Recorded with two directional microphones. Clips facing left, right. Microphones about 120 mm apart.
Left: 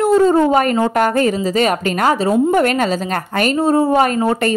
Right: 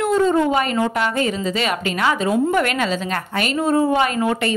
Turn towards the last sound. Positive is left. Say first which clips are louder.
# left 4 dB
turn(degrees=40)  # may be behind; listen again after turning